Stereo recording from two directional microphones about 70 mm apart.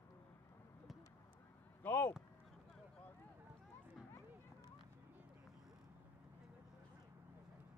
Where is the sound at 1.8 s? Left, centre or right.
Left.